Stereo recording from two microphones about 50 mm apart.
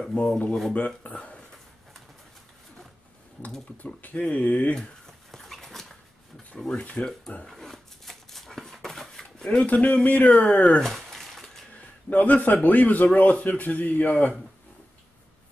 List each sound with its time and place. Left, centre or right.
0.0 s speech: centre
3.8 s speech: left
4.7 s dog: centre
6.7 s speech: centre
7.4 s dog: centre
9.4 s speech: centre
10.8 s a sound: centre
12.1 s speech: left